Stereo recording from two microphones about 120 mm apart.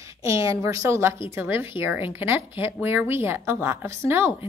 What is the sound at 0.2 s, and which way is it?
A woman's voice, 25° right (ahead or behind).